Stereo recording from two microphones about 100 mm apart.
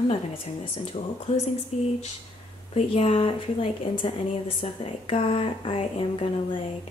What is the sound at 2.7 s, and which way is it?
A woman's voice, 75° left (ahead or behind).